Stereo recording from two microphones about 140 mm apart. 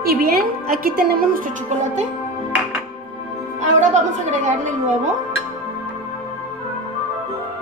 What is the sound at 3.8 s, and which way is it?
A woman's voice, 60° right (ahead or behind).